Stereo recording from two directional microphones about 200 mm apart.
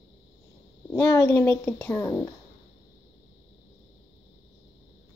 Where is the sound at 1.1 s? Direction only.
15° left (ahead or behind).